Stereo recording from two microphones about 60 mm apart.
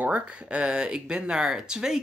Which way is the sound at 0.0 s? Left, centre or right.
Centre.